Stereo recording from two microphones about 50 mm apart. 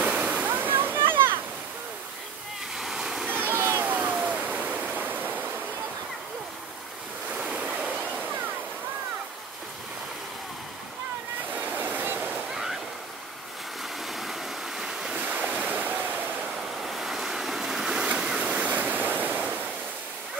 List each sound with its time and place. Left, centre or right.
0.0 s waterfall: right
0.5 s a sound: right
2.8 s waterfall: centre
3.3 s a sound: right
3.8 s waterfall: right
7.3 s waves: right
11.5 s a sound: right
14.0 s waves: centre
15.1 s waves: right
16.8 s waves: centre
18.0 s stream: right
18.4 s waterfall: right
18.7 s waves: right